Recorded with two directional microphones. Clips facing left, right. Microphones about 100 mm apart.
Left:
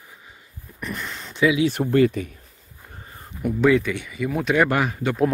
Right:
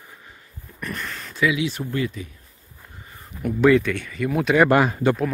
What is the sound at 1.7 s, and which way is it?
Speech, 65° left (ahead or behind).